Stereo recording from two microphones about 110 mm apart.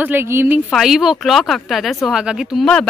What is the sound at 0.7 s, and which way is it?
Speech, 5° right (ahead or behind).